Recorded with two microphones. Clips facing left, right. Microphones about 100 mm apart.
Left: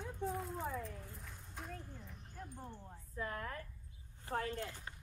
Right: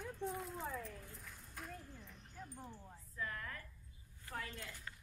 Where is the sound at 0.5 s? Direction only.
10° left (ahead or behind).